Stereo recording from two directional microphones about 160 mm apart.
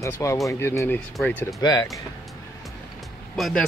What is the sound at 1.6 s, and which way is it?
Speech, 25° left (ahead or behind).